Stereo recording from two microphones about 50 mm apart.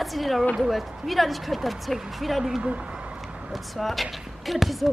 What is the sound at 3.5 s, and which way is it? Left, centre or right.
A woman's voice, centre.